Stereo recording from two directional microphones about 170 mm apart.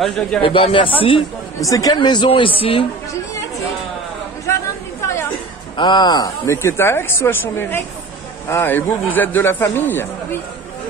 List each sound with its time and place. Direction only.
0.4 s speech: 30° left (ahead or behind)
1.6 s speech: 20° left (ahead or behind)
5.0 s chatter: 15° left (ahead or behind)
5.8 s speech: 25° left (ahead or behind)